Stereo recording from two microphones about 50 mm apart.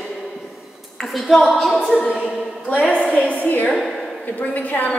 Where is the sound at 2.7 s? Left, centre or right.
Left.